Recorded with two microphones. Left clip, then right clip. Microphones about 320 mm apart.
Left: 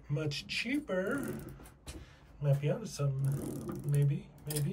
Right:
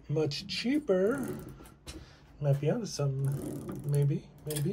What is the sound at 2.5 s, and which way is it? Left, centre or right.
Speech, centre.